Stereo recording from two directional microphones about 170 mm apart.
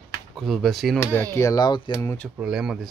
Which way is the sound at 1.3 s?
20° left (ahead or behind).